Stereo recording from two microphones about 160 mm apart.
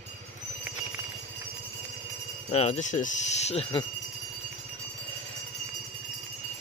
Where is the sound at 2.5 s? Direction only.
45° left (ahead or behind).